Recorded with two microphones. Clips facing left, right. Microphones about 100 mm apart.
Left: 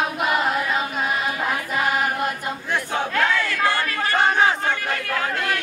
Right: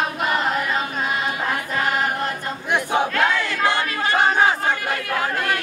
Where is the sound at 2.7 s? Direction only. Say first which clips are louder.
Right 5 dB; 15° right (ahead or behind).